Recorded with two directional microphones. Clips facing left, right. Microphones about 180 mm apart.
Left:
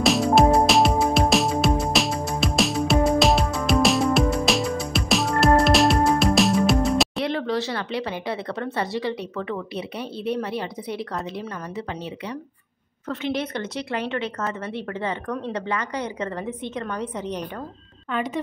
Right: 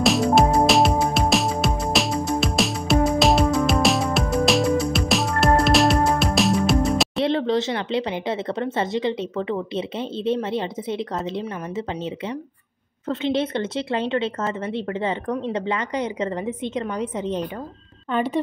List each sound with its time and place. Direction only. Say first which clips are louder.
0.0 s music: even; centre (ahead or behind)
7.2 s speech: right 4 dB; 25° right (ahead or behind)
18.1 s a woman's voice: right 4 dB; 30° right (ahead or behind)